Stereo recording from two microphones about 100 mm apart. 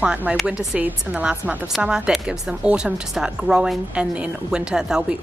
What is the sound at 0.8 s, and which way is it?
A woman's voice, 15° right (ahead or behind).